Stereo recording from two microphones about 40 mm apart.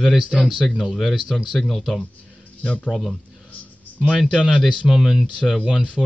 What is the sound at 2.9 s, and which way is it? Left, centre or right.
Speech, centre.